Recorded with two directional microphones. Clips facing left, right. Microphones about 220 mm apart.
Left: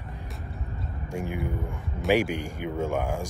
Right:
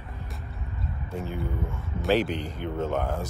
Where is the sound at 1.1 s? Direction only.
15° left (ahead or behind).